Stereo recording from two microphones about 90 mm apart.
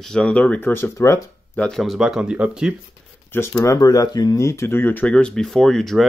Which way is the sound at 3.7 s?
45° left (ahead or behind).